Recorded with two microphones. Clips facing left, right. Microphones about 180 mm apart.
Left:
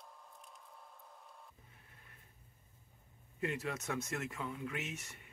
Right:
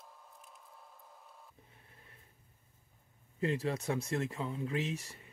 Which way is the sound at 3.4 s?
30° right (ahead or behind).